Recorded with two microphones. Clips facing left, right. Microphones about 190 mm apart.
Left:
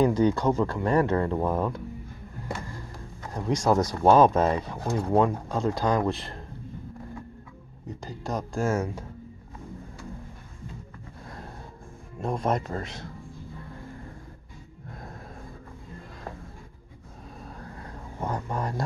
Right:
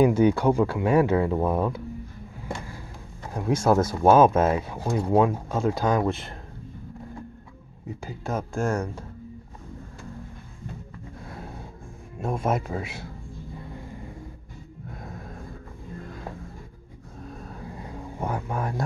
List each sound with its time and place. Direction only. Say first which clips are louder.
0.0 s speech: right 3 dB; 10° right (ahead or behind)
3.3 s speech: right 2 dB; 5° right (ahead or behind)
7.9 s speech: right 2 dB; 5° right (ahead or behind)
11.2 s snort: right 2 dB; 5° right (ahead or behind)
12.2 s speech: right 1 dB; 5° right (ahead or behind)
14.9 s snort: right 2 dB; centre (ahead or behind)
17.6 s a sound: right 4 dB; 10° right (ahead or behind)